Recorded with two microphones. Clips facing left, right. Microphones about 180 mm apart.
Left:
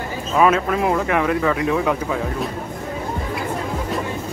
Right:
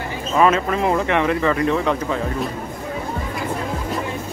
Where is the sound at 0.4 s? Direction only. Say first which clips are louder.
Even; 5° left (ahead or behind).